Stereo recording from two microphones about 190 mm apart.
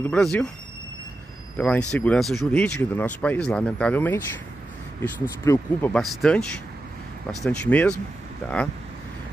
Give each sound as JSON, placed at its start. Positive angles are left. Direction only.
{"t": 0.0, "sound": "speech", "side_deg": 5}
{"t": 1.6, "sound": "speech", "side_deg": 5}
{"t": 5.4, "sound": "speech", "side_deg": 10}
{"t": 7.4, "sound": "speech", "side_deg": 5}